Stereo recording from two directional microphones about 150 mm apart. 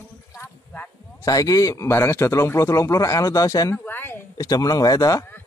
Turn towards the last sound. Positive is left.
turn(degrees=20)  # may be behind; listen again after turning